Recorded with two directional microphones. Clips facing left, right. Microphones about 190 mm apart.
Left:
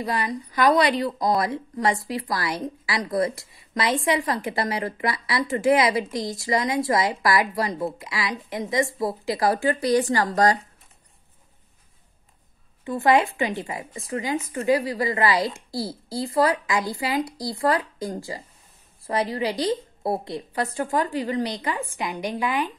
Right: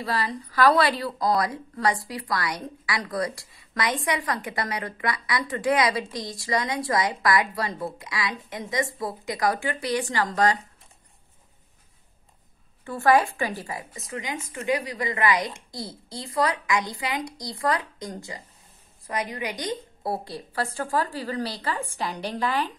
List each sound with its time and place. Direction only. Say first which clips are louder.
0.0 s a woman's voice: left 2 dB; 20° left (ahead or behind); by 10.6 s 40° left (ahead or behind)
12.8 s a woman's voice: left 1 dB; 20° left (ahead or behind)